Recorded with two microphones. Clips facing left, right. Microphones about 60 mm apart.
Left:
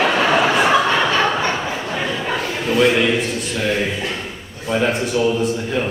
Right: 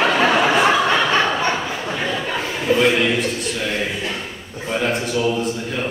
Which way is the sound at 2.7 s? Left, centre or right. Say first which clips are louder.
Left 1 dB; centre.